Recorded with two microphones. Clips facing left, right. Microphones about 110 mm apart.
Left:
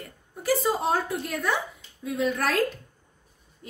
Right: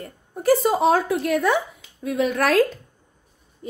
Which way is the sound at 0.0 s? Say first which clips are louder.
Right 9 dB; 50° right (ahead or behind).